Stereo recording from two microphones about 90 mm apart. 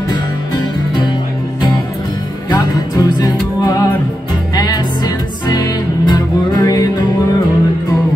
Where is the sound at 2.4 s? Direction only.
45° left (ahead or behind).